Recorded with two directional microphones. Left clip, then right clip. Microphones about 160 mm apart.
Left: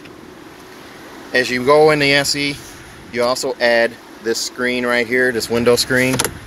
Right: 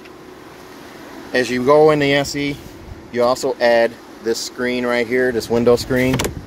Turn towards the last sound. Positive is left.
turn(degrees=-5)  # may be behind; listen again after turning